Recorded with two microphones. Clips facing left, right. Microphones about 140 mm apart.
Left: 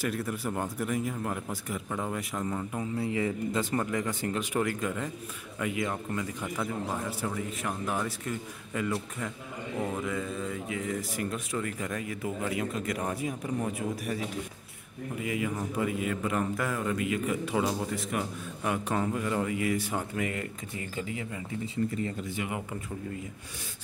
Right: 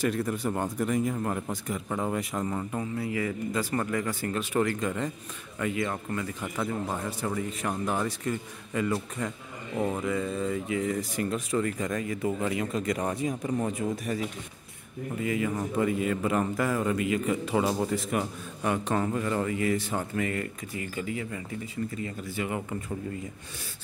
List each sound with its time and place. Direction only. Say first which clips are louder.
0.0 s speech: right 4 dB; 5° left (ahead or behind)
1.9 s speech: right 4 dB; 15° right (ahead or behind)
2.1 s speech: right 2 dB; centre (ahead or behind)
3.0 s a man's voice: left 3 dB; 25° left (ahead or behind)
4.6 s a man's voice: right 4 dB; 5° left (ahead or behind)
6.4 s speech: right 1 dB; 10° right (ahead or behind)
7.1 s speech: right 2 dB; 5° left (ahead or behind)
10.0 s a man's voice: right 4 dB; centre (ahead or behind); by 22.6 s 15° left (ahead or behind)